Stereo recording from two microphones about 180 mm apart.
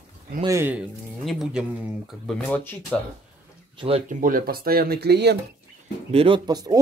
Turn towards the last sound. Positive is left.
turn(degrees=-20)  # may be behind; listen again after turning